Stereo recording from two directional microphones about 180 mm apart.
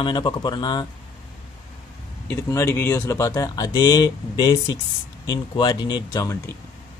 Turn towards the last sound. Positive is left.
turn(degrees=15)  # may be behind; listen again after turning